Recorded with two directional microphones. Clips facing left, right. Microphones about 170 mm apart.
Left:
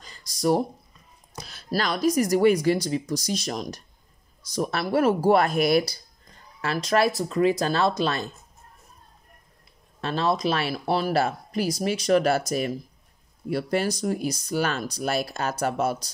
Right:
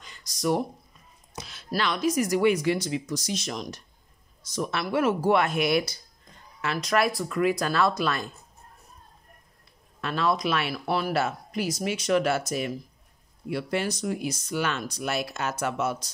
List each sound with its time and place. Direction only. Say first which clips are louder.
0.0 s a sound: left 3 dB; 35° left (ahead or behind)
1.4 s speech: left 1 dB; 40° left (ahead or behind)
9.9 s speech: left 1 dB; 30° left (ahead or behind)